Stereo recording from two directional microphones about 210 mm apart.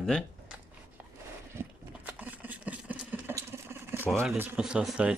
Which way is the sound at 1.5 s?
10° right (ahead or behind).